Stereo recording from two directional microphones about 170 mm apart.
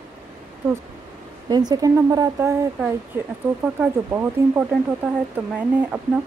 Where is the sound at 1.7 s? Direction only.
20° right (ahead or behind).